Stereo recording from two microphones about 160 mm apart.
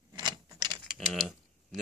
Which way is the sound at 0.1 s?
25° right (ahead or behind).